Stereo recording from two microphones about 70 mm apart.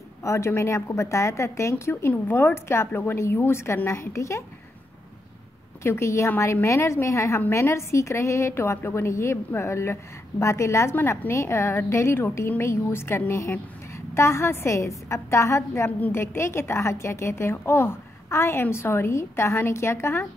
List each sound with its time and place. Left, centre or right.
0.2 s a woman's voice: left
5.9 s a woman's voice: left